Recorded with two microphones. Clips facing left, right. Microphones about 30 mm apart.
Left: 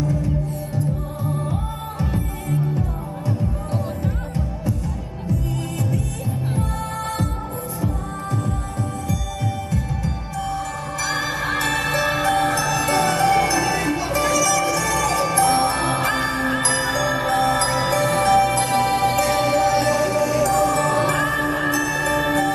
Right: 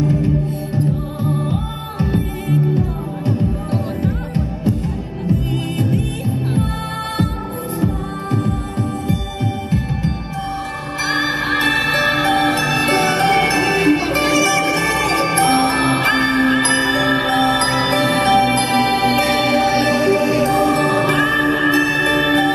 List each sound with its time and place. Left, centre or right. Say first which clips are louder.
0.0 s music: right 6 dB; right
7.8 s music: right 5 dB; right
11.1 s music: right 6 dB; right